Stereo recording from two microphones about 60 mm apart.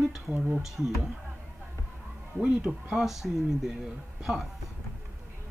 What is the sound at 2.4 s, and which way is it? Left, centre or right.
Speech, centre.